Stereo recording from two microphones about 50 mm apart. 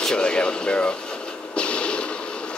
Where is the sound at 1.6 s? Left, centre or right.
Left.